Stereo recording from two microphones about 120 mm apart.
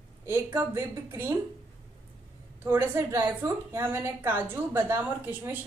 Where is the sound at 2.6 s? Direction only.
20° right (ahead or behind).